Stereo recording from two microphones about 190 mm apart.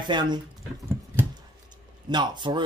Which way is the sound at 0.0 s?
25° right (ahead or behind).